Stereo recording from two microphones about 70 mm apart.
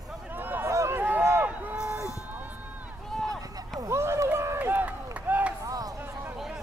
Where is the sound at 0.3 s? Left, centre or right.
Right.